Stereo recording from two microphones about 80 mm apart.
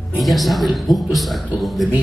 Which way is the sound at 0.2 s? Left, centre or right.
Centre.